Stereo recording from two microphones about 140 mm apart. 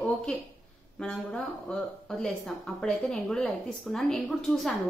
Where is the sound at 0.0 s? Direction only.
5° left (ahead or behind).